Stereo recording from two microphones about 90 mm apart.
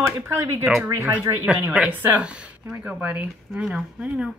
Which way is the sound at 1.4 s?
10° right (ahead or behind).